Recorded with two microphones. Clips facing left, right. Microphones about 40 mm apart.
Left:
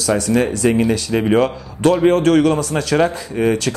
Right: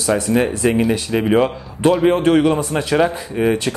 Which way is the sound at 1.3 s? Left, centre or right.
Centre.